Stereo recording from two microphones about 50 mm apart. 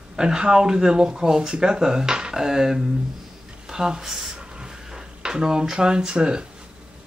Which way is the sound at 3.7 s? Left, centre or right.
Centre.